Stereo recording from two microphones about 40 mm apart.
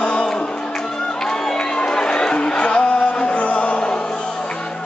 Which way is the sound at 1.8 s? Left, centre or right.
Left.